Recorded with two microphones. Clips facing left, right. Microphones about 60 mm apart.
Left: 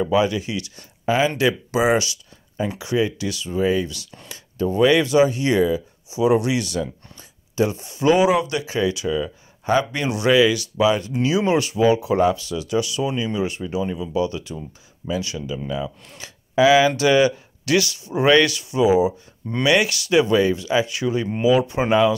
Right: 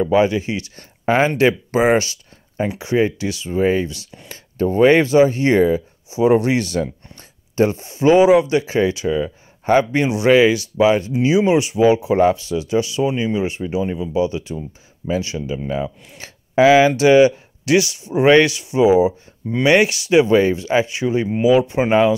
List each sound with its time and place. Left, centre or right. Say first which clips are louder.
0.1 s speech: right 4 dB; right
1.0 s speech: right 4 dB; right